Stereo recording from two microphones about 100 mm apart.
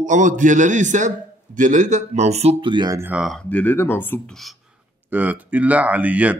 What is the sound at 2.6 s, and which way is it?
Speech, 50° right (ahead or behind).